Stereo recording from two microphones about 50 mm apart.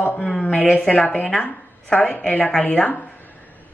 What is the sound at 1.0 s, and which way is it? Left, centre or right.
A woman's voice, left.